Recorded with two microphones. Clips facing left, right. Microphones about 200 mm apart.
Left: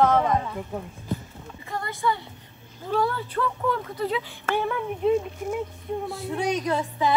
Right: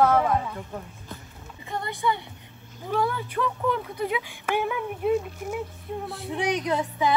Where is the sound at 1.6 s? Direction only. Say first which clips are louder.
Even; 20° right (ahead or behind).